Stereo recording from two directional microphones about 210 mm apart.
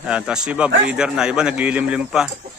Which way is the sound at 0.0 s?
5° right (ahead or behind).